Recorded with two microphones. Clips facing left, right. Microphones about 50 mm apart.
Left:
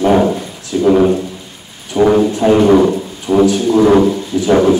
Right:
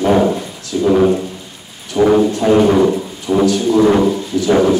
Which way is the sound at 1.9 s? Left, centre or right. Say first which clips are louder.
Left 1 dB; left.